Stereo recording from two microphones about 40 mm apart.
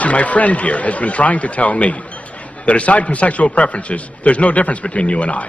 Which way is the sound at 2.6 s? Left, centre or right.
Left.